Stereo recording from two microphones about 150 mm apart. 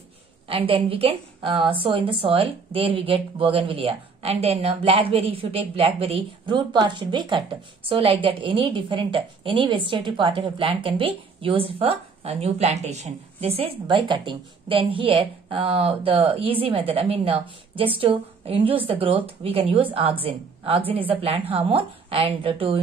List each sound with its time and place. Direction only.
0.5 s a woman's voice: 35° right (ahead or behind)